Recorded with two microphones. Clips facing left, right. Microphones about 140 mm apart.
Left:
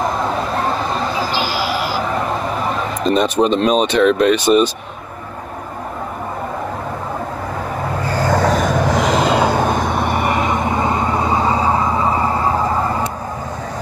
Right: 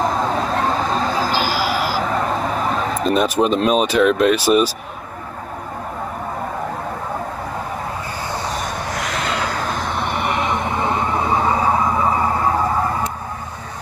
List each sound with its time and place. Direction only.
0.9 s a sound: 45° right (ahead or behind)
3.0 s speech: 5° right (ahead or behind)
8.1 s vehicle: 90° left; by 10.6 s 45° left (ahead or behind)
10.6 s vehicle: centre (ahead or behind)